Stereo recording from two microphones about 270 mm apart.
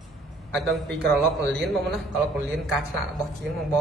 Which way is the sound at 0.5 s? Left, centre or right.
Centre.